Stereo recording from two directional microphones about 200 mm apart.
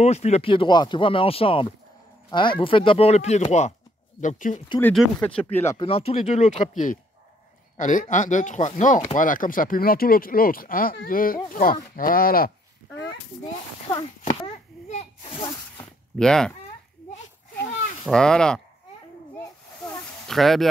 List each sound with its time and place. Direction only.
0.0 s speech: 35° left (ahead or behind)
4.6 s speech: 15° left (ahead or behind)
5.8 s speech: 30° left (ahead or behind); by 13.0 s 45° left (ahead or behind)
14.2 s a sound: 30° left (ahead or behind)
16.2 s speech: 5° left (ahead or behind)
18.0 s speech: 5° left (ahead or behind)
20.2 s speech: centre (ahead or behind)